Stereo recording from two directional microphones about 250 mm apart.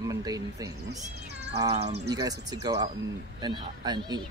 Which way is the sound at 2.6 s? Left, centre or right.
Centre.